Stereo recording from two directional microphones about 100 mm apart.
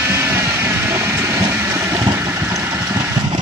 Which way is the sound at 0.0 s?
25° right (ahead or behind).